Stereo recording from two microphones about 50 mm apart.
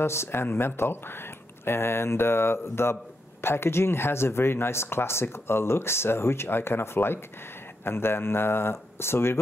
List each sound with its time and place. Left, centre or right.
0.0 s speech: left